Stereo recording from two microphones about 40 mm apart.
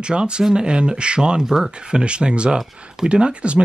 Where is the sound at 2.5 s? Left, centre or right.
Centre.